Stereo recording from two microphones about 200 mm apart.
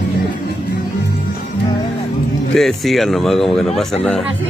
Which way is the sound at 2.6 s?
Centre (ahead or behind).